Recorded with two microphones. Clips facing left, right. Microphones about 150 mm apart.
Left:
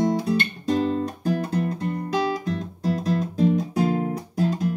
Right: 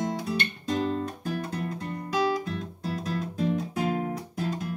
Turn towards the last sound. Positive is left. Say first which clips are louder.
# left 6 dB
turn(degrees=35)  # may be behind; listen again after turning